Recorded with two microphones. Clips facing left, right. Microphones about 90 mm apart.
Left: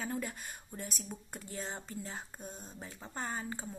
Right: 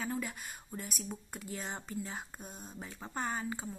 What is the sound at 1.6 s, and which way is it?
Speech, 20° right (ahead or behind).